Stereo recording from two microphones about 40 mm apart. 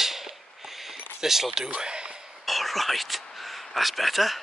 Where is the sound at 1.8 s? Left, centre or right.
Right.